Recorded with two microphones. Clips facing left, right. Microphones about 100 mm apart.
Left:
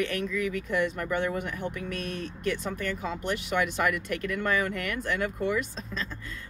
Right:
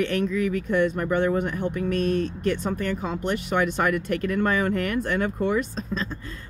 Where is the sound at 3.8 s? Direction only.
35° right (ahead or behind).